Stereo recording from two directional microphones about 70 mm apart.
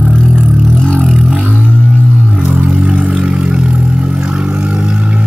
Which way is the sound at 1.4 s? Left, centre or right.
Right.